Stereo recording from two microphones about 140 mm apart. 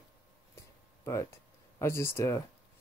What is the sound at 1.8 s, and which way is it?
Speech, 20° left (ahead or behind).